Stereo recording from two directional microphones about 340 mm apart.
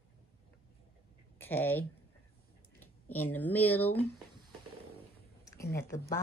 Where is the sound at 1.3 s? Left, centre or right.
Centre.